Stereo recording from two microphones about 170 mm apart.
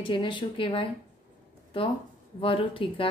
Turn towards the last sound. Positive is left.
turn(degrees=30)  # may be behind; listen again after turning